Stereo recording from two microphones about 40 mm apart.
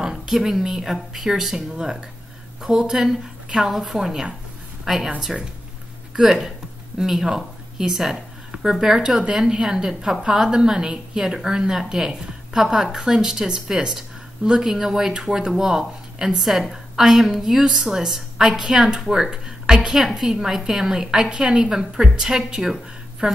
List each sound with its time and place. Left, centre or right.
0.0 s a woman's voice: centre
6.1 s a woman's voice: centre
23.2 s speech: right